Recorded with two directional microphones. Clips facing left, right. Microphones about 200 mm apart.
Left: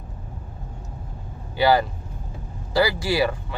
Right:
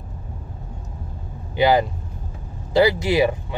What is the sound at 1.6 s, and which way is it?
Speech, 20° right (ahead or behind).